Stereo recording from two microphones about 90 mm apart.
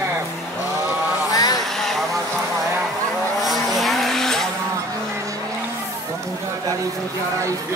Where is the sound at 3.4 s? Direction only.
Centre (ahead or behind).